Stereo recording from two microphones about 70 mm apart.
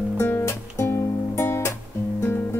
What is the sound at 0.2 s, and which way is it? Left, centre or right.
Music, left.